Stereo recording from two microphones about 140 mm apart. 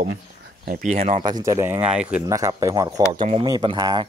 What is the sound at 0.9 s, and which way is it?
Speech, 45° right (ahead or behind).